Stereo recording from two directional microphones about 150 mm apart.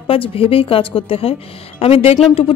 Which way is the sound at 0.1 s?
40° left (ahead or behind).